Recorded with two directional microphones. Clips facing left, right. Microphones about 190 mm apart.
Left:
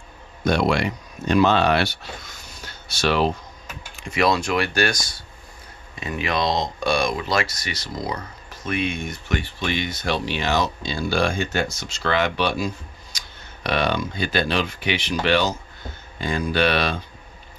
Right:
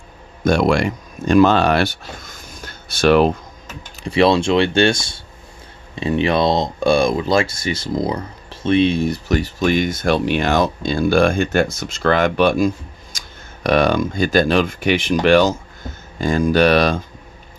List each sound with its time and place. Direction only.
0.4 s speech: 50° right (ahead or behind)
4.0 s speech: 30° right (ahead or behind)
7.7 s speech: 50° right (ahead or behind)
8.0 s speech: 30° right (ahead or behind); by 17.0 s 45° right (ahead or behind)